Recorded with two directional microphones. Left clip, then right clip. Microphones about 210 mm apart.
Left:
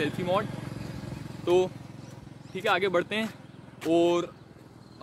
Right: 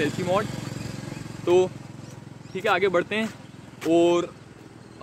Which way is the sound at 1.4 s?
5° left (ahead or behind).